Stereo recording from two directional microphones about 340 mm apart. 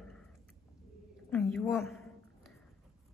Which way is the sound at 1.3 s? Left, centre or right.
Centre.